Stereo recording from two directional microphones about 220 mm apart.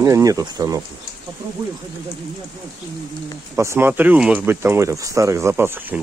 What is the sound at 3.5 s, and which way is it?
Speech, 10° right (ahead or behind).